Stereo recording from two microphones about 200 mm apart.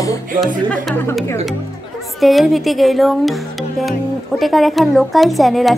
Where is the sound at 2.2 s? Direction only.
Centre (ahead or behind).